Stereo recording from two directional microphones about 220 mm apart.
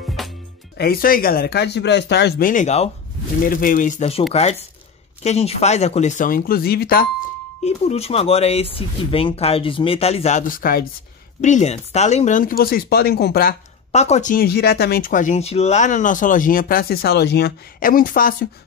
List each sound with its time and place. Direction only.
0.2 s music: centre (ahead or behind)
0.7 s speech: 45° left (ahead or behind)
7.6 s speech: 30° left (ahead or behind); by 13.6 s 45° left (ahead or behind)
13.9 s speech: 30° left (ahead or behind)